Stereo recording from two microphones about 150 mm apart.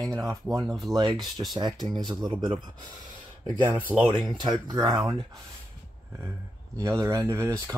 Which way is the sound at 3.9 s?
10° right (ahead or behind).